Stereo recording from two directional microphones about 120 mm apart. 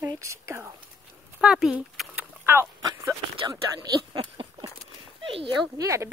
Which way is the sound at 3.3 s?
40° right (ahead or behind).